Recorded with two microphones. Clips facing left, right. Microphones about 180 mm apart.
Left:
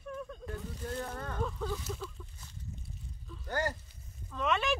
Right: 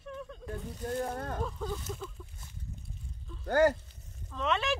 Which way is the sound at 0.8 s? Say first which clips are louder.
Right 6 dB; 40° right (ahead or behind).